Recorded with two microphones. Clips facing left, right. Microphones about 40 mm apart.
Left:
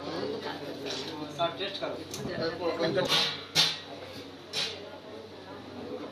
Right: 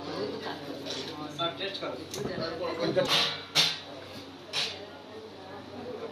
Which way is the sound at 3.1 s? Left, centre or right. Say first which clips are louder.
Right 1 dB; right.